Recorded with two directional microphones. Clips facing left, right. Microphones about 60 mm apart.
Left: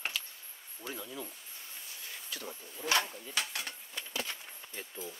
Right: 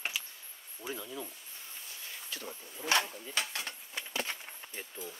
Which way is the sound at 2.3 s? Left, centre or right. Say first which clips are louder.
Even; right.